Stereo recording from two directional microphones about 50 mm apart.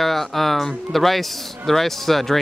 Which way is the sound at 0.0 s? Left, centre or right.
Centre.